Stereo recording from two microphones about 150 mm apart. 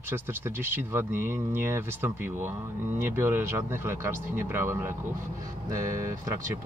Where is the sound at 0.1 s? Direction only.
15° right (ahead or behind).